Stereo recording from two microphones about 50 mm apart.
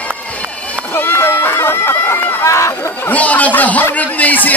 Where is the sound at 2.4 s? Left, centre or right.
Left.